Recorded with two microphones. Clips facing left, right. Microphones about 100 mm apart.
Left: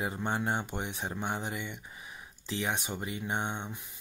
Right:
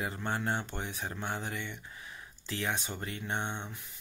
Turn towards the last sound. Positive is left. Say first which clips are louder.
# left 2 dB
turn(degrees=15)  # may be behind; listen again after turning